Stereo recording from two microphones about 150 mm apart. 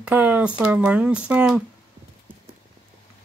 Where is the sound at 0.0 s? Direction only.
10° right (ahead or behind).